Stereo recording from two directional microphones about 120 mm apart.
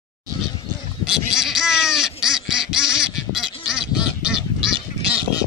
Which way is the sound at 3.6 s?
5° right (ahead or behind).